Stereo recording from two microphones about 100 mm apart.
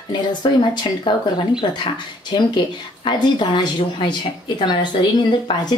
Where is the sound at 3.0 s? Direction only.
50° left (ahead or behind).